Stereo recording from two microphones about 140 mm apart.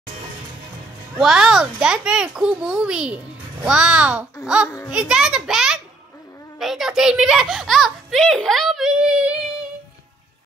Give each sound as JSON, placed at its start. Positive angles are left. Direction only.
{"t": 1.1, "sound": "a child's voice", "side_deg": -5}
{"t": 4.6, "sound": "a child's voice", "side_deg": 20}
{"t": 4.9, "sound": "a child's voice", "side_deg": -5}